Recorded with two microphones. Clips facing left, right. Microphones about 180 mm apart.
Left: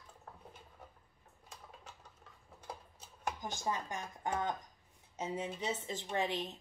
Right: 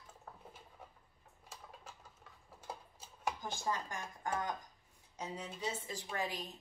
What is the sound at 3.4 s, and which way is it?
A woman's voice, 20° left (ahead or behind).